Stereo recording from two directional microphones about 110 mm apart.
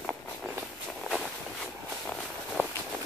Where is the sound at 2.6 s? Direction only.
20° right (ahead or behind).